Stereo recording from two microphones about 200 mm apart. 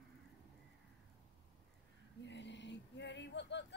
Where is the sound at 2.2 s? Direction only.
60° left (ahead or behind).